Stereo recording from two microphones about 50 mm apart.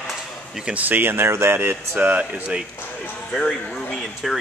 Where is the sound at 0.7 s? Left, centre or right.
Right.